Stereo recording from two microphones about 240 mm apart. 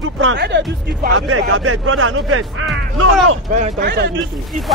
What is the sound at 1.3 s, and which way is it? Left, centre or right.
Speech, right.